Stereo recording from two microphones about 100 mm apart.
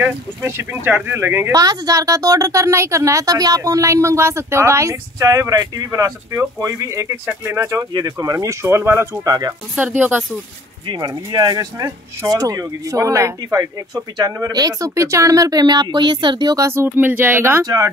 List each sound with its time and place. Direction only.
0.0 s speech: 25° right (ahead or behind)
1.5 s speech: 40° right (ahead or behind)
9.8 s speech: 15° right (ahead or behind)
10.9 s speech: 45° right (ahead or behind)
16.5 s speech: 30° right (ahead or behind)